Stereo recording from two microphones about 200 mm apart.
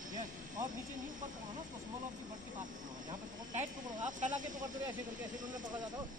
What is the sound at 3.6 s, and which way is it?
Speech, 40° right (ahead or behind).